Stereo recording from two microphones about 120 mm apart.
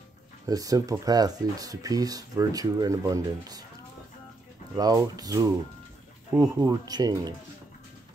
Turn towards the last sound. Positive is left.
turn(degrees=-35)  # may be behind; listen again after turning